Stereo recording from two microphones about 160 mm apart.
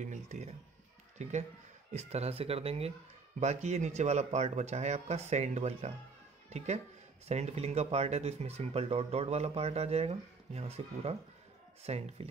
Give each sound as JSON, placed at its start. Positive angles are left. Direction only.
{"t": 0.0, "sound": "speech", "side_deg": -50}